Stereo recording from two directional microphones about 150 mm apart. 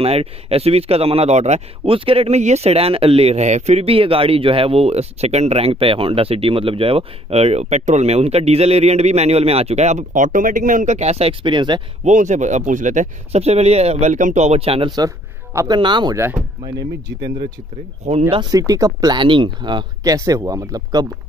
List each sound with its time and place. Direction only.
0.0 s speech: 40° right (ahead or behind)
12.0 s speech: 55° right (ahead or behind)
15.0 s a sound: 20° right (ahead or behind)
15.8 s speech: 30° right (ahead or behind)
16.2 s speech: 15° right (ahead or behind)
18.3 s speech: 25° right (ahead or behind)